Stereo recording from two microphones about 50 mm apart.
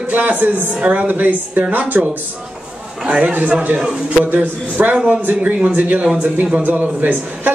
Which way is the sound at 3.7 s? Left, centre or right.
Centre.